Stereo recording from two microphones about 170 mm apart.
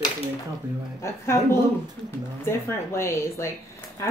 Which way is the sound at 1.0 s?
15° left (ahead or behind).